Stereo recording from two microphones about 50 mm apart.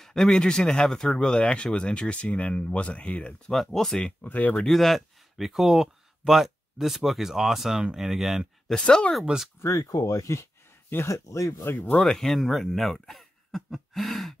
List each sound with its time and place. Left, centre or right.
0.0 s speech: centre
3.5 s speech: centre
4.2 s speech: left
4.6 s speech: centre
8.6 s speech: centre
9.6 s speech: left
11.1 s speech: left
11.6 s speech: left
12.0 s speech: centre